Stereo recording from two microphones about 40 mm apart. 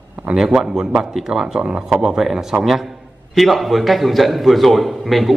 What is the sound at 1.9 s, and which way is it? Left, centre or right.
A man's voice, centre.